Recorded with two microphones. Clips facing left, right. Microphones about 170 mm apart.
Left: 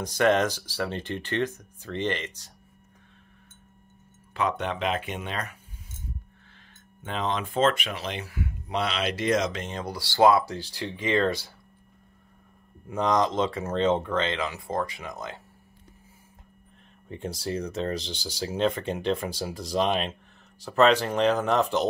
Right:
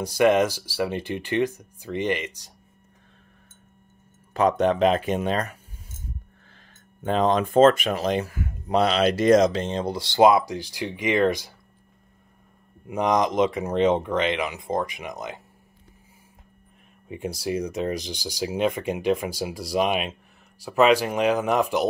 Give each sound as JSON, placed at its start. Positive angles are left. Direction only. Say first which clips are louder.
{"t": 0.0, "sound": "speech", "louder": "right 3 dB", "side_deg": -10}
{"t": 4.3, "sound": "speech", "louder": "right 8 dB", "side_deg": -40}
{"t": 7.0, "sound": "speech", "louder": "right 8 dB", "side_deg": -40}
{"t": 12.8, "sound": "speech", "louder": "right 2 dB", "side_deg": -15}
{"t": 17.1, "sound": "speech", "louder": "right 4 dB", "side_deg": -10}